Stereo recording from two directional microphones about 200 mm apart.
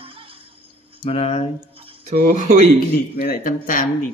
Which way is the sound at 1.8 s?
30° right (ahead or behind).